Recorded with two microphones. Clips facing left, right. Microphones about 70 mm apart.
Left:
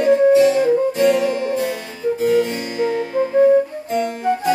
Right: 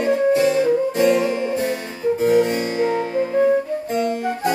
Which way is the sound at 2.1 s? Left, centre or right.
Centre.